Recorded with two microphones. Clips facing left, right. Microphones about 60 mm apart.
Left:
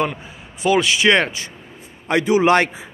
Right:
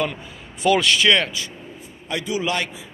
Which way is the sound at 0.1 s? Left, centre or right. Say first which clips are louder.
Left 2 dB; centre.